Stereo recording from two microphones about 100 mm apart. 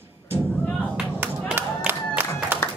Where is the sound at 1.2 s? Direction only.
20° right (ahead or behind).